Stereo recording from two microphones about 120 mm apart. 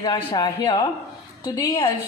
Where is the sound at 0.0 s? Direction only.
40° left (ahead or behind).